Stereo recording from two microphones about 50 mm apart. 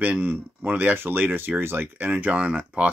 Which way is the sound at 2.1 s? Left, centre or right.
Right.